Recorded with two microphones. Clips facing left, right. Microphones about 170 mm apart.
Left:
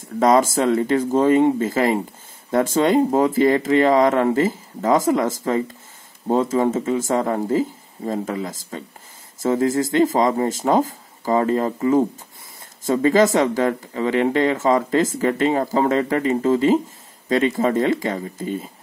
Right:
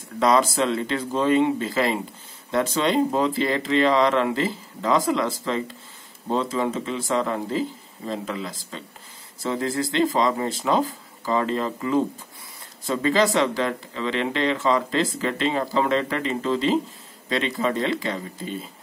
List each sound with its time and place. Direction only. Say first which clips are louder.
0.2 s speech: left 4 dB; 45° left (ahead or behind)